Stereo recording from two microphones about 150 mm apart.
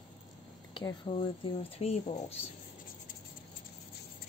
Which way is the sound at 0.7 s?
35° left (ahead or behind).